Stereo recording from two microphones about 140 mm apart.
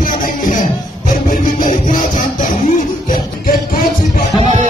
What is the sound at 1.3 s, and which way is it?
Music, 75° left (ahead or behind).